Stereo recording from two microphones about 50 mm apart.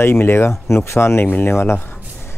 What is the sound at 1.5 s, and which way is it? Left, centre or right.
Speech, left.